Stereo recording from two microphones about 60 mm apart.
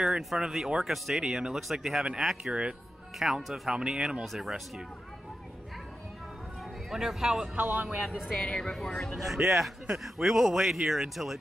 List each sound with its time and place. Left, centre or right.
0.0 s speech: centre
6.9 s speech: centre
7.5 s speech: right
8.1 s speech: centre